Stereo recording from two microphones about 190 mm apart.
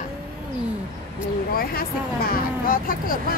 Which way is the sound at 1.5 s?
50° left (ahead or behind).